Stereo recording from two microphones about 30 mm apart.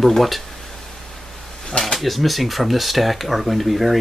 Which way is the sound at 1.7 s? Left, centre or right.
Left.